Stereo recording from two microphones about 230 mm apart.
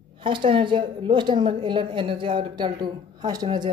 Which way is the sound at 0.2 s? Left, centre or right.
Right.